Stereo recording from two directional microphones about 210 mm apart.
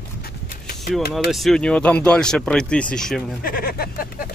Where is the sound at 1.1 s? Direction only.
Centre (ahead or behind).